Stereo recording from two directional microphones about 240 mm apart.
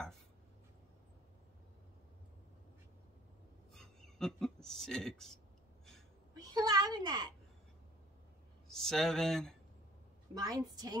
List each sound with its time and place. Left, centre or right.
3.7 s speech: centre
6.3 s a sound: centre
8.6 s speech: centre
10.3 s a woman's voice: centre